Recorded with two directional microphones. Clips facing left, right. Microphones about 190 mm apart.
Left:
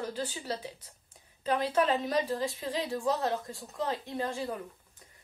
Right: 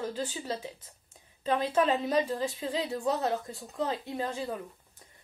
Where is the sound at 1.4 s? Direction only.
25° right (ahead or behind).